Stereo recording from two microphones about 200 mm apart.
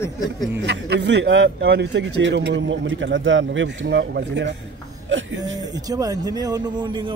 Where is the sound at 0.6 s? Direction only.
60° right (ahead or behind).